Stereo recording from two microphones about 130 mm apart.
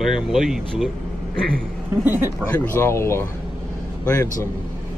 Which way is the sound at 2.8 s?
20° left (ahead or behind).